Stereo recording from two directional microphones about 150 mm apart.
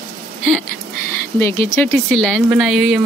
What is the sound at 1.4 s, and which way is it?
Speech, 15° left (ahead or behind).